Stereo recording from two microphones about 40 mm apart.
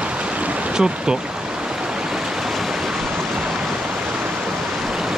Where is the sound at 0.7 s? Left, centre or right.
Centre.